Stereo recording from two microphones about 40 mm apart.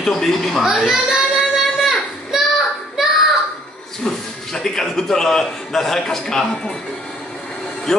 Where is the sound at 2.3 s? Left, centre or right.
Centre.